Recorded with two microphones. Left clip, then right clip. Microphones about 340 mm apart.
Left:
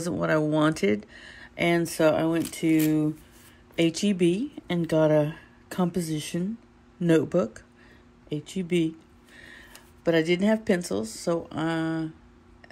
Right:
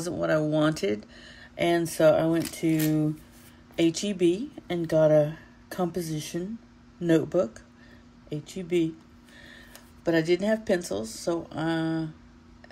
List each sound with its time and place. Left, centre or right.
0.0 s speech: left
2.6 s speech: left
3.7 s speech: left
9.4 s a sound: left
10.0 s speech: left